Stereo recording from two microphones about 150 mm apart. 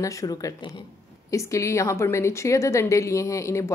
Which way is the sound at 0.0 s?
20° left (ahead or behind).